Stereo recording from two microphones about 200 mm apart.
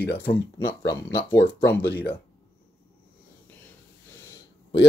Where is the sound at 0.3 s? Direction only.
25° left (ahead or behind).